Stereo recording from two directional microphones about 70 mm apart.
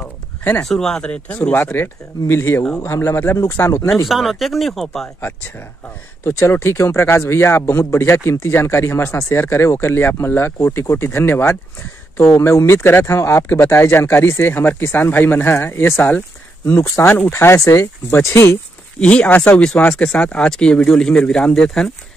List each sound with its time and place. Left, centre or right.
0.0 s a sound: left
0.7 s speech: centre
1.3 s speech: left
4.1 s speech: centre
6.2 s speech: left
12.4 s speech: left
13.5 s speech: left
16.9 s speech: left
17.6 s speech: left
18.9 s speech: centre